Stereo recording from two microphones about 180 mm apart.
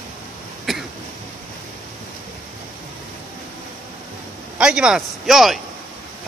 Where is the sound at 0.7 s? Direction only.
Centre (ahead or behind).